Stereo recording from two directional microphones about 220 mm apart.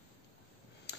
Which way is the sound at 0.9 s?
50° left (ahead or behind).